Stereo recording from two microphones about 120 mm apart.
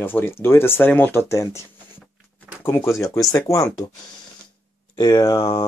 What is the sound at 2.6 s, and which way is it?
Speech, 20° left (ahead or behind).